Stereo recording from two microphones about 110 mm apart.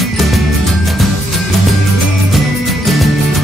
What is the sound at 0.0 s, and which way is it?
Music, centre (ahead or behind).